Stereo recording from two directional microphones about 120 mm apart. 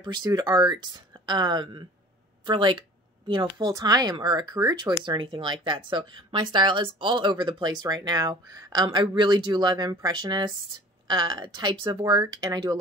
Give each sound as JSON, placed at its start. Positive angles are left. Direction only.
{"t": 0.0, "sound": "speech", "side_deg": -35}